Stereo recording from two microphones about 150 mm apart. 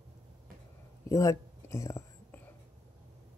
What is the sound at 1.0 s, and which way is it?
Whispering, 20° left (ahead or behind).